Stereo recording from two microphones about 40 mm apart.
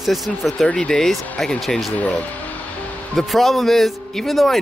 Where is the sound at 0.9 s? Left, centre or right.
Centre.